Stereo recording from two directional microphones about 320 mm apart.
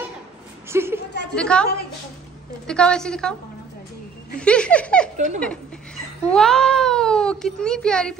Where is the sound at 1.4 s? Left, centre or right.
Centre.